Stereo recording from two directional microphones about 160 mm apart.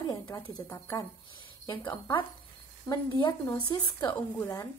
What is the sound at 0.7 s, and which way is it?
Speech, 25° left (ahead or behind).